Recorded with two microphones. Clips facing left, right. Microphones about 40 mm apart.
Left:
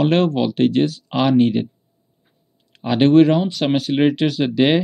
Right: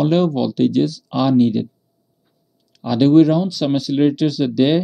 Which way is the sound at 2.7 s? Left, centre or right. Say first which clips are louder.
Right 1 dB; left.